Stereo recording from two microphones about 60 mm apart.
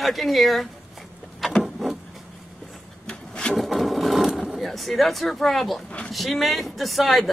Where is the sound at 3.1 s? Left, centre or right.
Centre.